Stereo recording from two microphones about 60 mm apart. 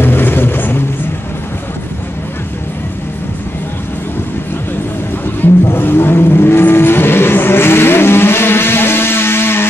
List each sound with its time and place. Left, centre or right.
0.0 s vehicle: left
5.4 s vehicle: left